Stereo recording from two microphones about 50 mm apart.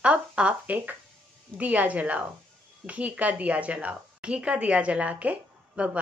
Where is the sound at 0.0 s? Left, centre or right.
Right.